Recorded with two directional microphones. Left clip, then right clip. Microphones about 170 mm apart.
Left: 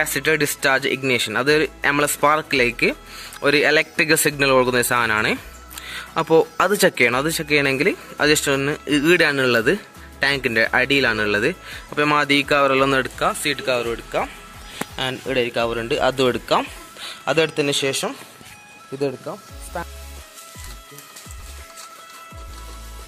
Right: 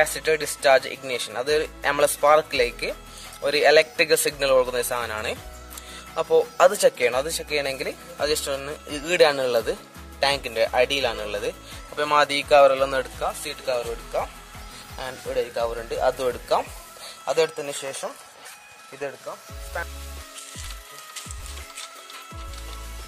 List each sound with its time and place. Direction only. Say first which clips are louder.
0.0 s speech: left 3 dB; centre (ahead or behind)
17.2 s a sound: left 3 dB; centre (ahead or behind)
17.6 s speech: left 10 dB; 20° left (ahead or behind)
18.9 s speech: left 7 dB; 30° left (ahead or behind)